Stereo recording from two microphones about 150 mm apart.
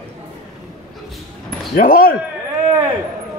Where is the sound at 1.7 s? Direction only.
65° left (ahead or behind).